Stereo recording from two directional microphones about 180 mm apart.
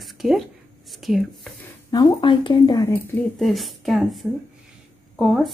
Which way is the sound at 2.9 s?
5° left (ahead or behind).